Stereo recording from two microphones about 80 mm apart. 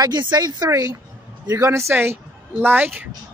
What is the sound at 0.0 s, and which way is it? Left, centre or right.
Speech, right.